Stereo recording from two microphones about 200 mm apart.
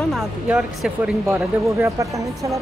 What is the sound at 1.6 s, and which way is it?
Speech, 15° right (ahead or behind).